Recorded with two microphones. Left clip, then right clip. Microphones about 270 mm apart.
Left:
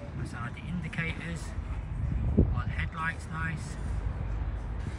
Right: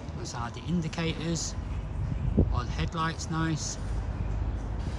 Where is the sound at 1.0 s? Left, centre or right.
Centre.